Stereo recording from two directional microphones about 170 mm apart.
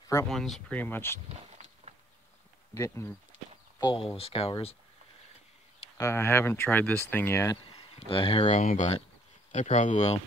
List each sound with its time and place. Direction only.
0.3 s speech: centre (ahead or behind)
1.3 s a sound: 40° right (ahead or behind)
2.7 s speech: 15° left (ahead or behind)
3.8 s speech: 30° left (ahead or behind)
5.9 s speech: 15° left (ahead or behind)
8.1 s speech: 35° left (ahead or behind)